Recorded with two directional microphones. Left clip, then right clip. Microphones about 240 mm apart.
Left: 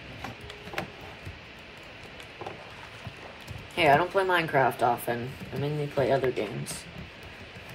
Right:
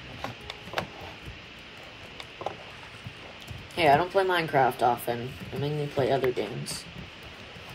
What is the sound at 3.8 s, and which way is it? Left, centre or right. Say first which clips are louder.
Speech: even; centre.